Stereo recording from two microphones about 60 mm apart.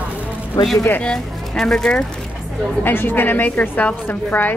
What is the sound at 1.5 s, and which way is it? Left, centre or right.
Speech, centre.